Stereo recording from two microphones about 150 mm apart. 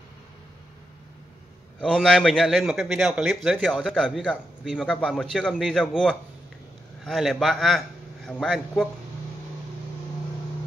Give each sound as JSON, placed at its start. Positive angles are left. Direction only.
{"t": 1.8, "sound": "a man's voice", "side_deg": 5}